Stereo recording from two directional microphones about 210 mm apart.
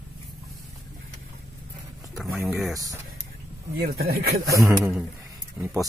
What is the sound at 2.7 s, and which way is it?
Speech, 15° right (ahead or behind).